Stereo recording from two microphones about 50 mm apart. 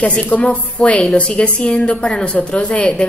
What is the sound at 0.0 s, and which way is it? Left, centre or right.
A woman's voice, left.